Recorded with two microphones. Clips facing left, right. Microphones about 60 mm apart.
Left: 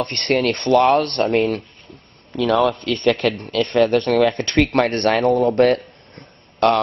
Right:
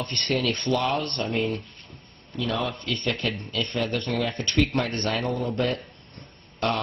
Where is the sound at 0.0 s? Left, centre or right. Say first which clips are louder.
Left 7 dB; left.